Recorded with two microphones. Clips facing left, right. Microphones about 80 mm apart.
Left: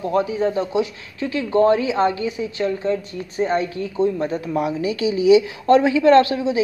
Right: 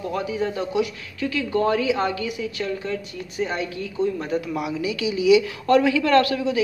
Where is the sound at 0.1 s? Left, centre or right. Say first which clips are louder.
Left 7 dB; left.